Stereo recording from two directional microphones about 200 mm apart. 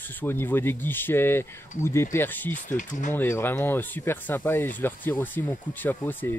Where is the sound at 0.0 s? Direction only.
10° left (ahead or behind).